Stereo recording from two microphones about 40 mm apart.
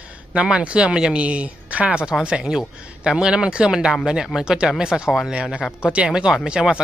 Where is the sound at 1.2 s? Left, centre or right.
Right.